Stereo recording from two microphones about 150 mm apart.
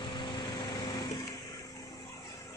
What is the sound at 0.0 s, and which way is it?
Light engine, 30° left (ahead or behind).